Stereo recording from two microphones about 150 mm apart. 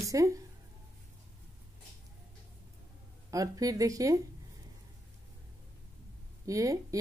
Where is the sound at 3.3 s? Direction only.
25° right (ahead or behind).